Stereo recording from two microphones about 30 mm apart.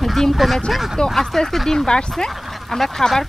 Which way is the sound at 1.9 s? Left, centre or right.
Left.